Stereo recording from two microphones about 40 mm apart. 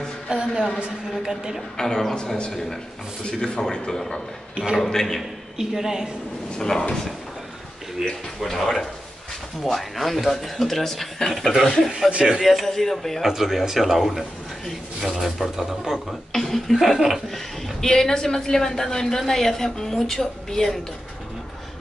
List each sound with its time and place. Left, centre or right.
0.3 s a sound: centre
1.3 s a woman's voice: centre
1.8 s a woman's voice: centre
2.1 s a man's voice: left
4.7 s a woman's voice: centre
5.6 s a woman's voice: centre
6.6 s a woman's voice: centre
8.0 s a woman's voice: centre
12.2 s a woman's voice: centre
12.6 s a woman's voice: centre
13.2 s speech: centre
16.3 s a woman's voice: centre
16.7 s speech: centre
17.3 s a woman's voice: centre